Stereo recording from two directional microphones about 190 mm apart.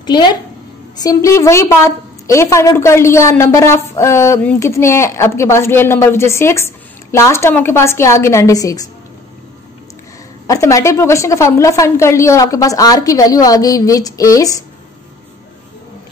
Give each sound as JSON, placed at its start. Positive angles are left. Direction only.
{"t": 0.0, "sound": "a woman's voice", "side_deg": 25}
{"t": 10.4, "sound": "a woman's voice", "side_deg": 15}